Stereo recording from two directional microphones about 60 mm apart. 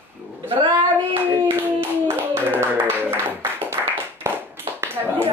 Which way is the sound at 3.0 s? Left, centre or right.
Right.